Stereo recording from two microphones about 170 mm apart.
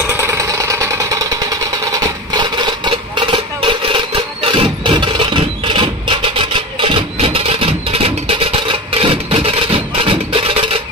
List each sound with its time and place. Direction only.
0.1 s vehicle: 15° right (ahead or behind); by 10.8 s 35° right (ahead or behind)